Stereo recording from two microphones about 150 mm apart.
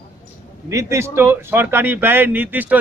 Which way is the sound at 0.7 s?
20° right (ahead or behind).